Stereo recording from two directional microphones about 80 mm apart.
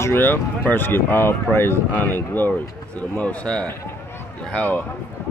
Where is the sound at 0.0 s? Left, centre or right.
Left.